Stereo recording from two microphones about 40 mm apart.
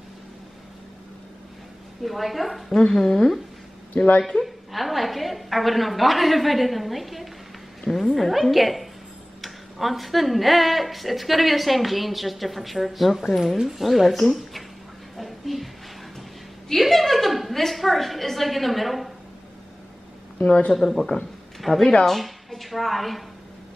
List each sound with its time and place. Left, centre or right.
2.0 s speech: centre
2.7 s speech: centre
3.9 s a woman's voice: left
4.7 s speech: centre
15.1 s a sound: centre
16.8 s speech: centre
20.4 s speech: left
20.7 s speech: centre